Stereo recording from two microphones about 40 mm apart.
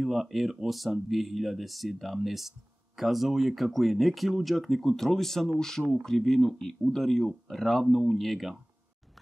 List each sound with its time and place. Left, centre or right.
0.0 s speech: centre